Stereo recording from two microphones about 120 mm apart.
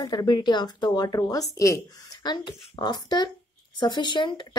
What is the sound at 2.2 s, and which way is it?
Speech, 40° left (ahead or behind).